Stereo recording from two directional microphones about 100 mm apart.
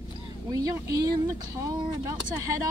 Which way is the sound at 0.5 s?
35° right (ahead or behind).